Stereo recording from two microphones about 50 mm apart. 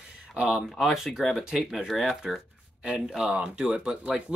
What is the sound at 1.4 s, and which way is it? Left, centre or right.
Speech, centre.